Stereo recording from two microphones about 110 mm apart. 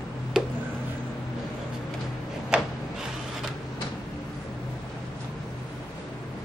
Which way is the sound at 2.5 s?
10° right (ahead or behind).